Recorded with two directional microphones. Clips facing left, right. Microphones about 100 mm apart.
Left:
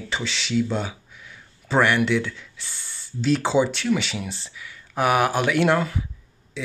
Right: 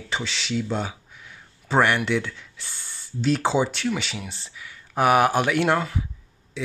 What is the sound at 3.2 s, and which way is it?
Speech, 45° right (ahead or behind).